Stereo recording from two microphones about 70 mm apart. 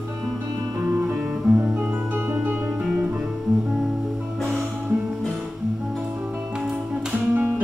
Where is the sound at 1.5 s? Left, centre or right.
Centre.